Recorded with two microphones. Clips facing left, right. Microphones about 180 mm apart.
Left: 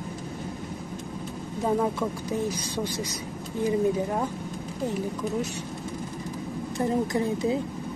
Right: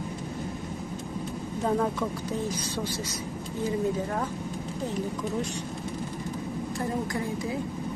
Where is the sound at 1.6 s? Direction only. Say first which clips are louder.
Left 2 dB; 10° left (ahead or behind).